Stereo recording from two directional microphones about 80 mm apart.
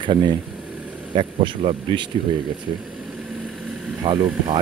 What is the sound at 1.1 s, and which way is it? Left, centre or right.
Speech, right.